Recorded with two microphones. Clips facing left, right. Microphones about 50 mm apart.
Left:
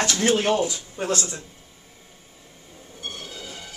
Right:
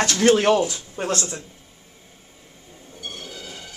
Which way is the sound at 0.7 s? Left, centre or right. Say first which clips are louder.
Right 1 dB; right.